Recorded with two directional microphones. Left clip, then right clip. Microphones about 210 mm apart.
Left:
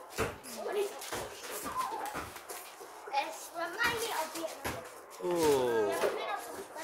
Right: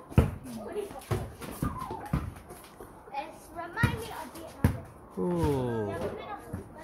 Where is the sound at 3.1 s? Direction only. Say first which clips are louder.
Left 4 dB; 15° left (ahead or behind).